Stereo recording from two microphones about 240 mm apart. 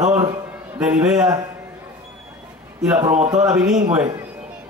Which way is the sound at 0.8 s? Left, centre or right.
Centre.